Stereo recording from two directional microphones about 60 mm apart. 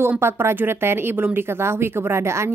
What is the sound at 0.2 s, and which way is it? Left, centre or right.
A woman's voice, right.